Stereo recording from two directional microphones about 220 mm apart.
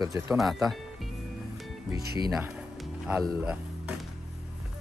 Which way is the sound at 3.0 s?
5° right (ahead or behind).